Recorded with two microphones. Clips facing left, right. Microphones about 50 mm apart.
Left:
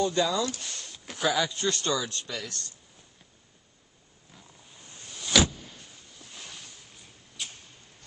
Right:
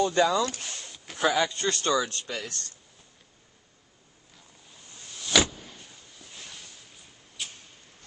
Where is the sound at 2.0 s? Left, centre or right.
Right.